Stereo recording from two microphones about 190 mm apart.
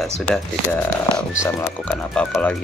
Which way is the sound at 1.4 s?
15° left (ahead or behind).